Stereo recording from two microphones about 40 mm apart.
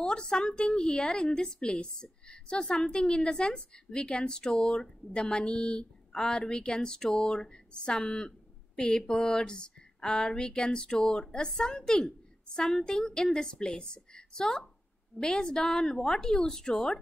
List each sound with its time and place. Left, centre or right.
0.0 s a woman's voice: left